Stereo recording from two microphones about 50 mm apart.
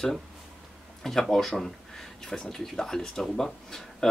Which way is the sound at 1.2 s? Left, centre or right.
Centre.